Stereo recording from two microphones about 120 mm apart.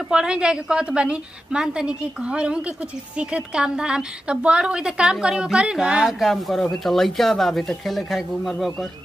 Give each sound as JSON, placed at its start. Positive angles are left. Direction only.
{"t": 0.1, "sound": "a woman's voice", "side_deg": -5}